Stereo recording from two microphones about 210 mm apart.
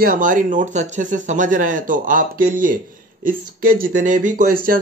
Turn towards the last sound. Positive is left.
turn(degrees=-40)  # may be behind; listen again after turning